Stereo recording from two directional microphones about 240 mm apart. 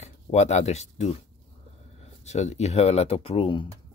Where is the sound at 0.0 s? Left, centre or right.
Left.